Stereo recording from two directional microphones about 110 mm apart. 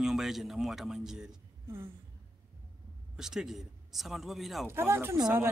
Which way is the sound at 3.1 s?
5° right (ahead or behind).